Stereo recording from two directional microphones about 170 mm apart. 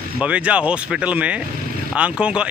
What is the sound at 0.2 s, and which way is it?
Speech, 5° right (ahead or behind).